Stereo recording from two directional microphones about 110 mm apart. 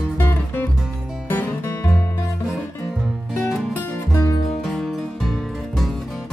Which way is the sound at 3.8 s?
25° left (ahead or behind).